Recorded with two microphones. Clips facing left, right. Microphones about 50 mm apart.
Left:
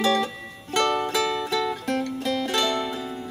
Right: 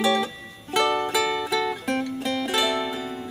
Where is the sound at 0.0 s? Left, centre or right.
Centre.